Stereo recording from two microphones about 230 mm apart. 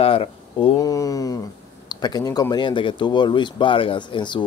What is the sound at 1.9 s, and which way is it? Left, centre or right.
Speech, centre.